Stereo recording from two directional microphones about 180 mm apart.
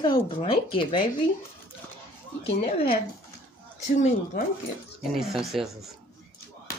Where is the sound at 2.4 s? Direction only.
30° left (ahead or behind).